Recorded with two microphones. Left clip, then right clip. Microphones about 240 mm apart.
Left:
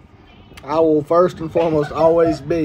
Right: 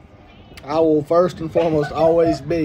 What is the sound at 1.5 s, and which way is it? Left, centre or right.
Speech, centre.